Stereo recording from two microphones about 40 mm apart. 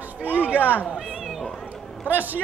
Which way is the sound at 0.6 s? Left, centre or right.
Left.